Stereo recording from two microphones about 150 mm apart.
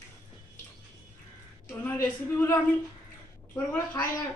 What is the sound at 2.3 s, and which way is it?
A woman's voice, 10° left (ahead or behind).